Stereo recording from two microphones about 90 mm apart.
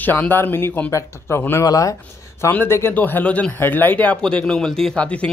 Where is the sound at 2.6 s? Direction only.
25° left (ahead or behind); by 5.3 s 10° left (ahead or behind).